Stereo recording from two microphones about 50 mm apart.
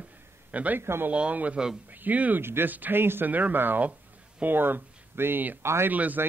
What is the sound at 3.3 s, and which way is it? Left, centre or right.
Speech, right.